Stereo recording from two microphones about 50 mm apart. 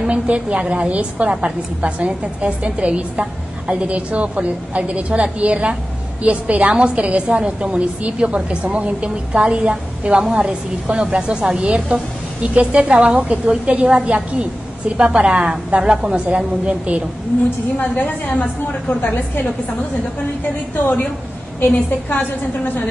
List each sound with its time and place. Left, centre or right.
0.0 s a woman's voice: right
17.7 s a woman's voice: left
18.9 s a woman's voice: left